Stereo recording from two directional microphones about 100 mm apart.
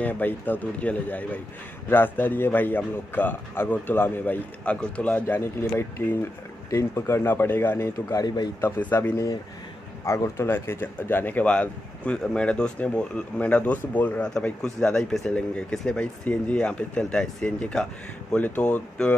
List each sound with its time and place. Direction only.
0.0 s a man's voice: 20° left (ahead or behind)
8.1 s speech: 35° left (ahead or behind)
8.6 s a man's voice: 20° left (ahead or behind)
9.1 s speech: 30° left (ahead or behind); by 19.1 s 10° left (ahead or behind)